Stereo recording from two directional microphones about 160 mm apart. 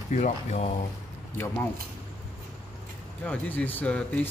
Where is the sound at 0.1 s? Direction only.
45° left (ahead or behind).